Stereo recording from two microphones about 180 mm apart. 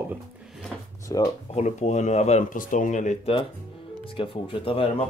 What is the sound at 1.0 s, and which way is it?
Speech, 20° left (ahead or behind).